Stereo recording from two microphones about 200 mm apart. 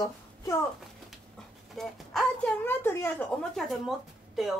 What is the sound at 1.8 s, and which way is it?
Speech, 5° left (ahead or behind).